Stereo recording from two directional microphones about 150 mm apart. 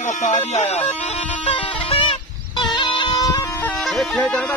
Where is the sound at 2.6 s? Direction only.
30° left (ahead or behind).